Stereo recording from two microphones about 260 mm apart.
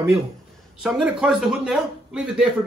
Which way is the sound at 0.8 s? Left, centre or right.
Centre.